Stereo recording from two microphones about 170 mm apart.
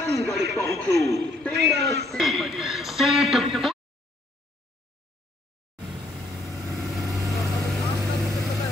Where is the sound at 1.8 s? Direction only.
75° right (ahead or behind).